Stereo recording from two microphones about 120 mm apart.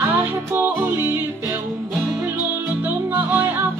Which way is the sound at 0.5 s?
15° right (ahead or behind).